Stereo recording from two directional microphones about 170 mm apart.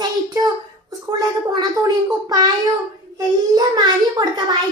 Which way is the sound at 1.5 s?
20° right (ahead or behind).